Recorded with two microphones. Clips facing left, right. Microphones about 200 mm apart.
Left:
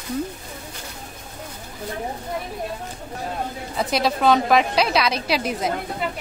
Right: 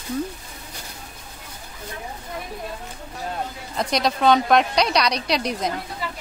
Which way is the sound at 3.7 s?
5° left (ahead or behind).